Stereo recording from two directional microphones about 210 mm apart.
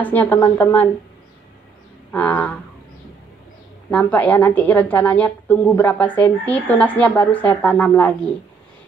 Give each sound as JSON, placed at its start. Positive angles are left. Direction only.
{"t": 0.0, "sound": "a woman's voice", "side_deg": 10}
{"t": 2.1, "sound": "a woman's voice", "side_deg": 5}
{"t": 3.9, "sound": "a woman's voice", "side_deg": 10}